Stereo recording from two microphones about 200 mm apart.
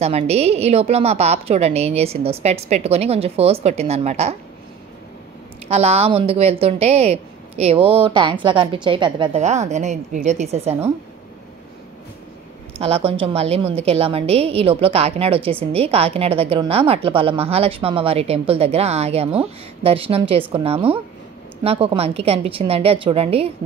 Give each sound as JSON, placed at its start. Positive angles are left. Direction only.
{"t": 0.0, "sound": "speech", "side_deg": -30}
{"t": 5.7, "sound": "speech", "side_deg": -30}
{"t": 12.8, "sound": "a woman's voice", "side_deg": -30}